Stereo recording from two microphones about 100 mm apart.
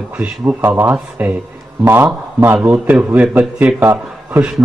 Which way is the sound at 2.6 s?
10° right (ahead or behind).